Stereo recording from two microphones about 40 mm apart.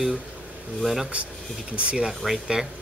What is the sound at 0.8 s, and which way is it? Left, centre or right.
Speech, centre.